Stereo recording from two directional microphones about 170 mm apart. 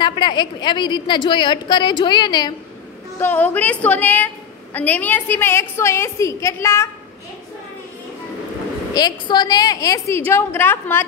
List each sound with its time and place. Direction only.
0.0 s a woman's voice: 25° left (ahead or behind)
3.2 s a woman's voice: 10° left (ahead or behind)
8.9 s a woman's voice: 25° left (ahead or behind)